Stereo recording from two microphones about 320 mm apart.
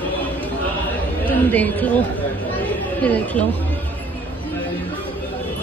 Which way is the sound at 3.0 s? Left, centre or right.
Centre.